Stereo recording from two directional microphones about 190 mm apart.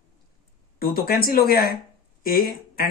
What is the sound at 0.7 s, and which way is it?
Speech, 50° left (ahead or behind).